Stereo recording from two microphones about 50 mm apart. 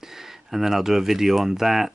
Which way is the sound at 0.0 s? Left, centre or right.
Centre.